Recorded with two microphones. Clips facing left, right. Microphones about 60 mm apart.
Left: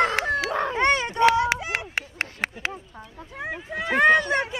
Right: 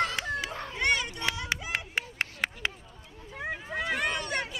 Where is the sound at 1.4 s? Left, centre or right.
Left.